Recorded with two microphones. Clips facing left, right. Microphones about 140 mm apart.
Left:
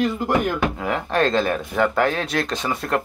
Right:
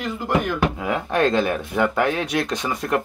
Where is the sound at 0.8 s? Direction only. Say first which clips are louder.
Even; 15° right (ahead or behind).